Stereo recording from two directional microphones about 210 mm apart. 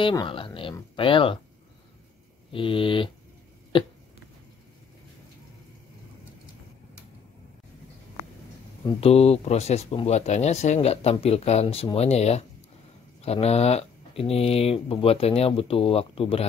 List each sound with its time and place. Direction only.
0.0 s speech: 20° left (ahead or behind)
2.5 s speech: 25° left (ahead or behind)
8.8 s speech: 30° left (ahead or behind)